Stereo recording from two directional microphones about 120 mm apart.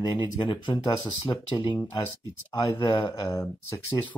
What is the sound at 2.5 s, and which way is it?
Speech, 30° left (ahead or behind).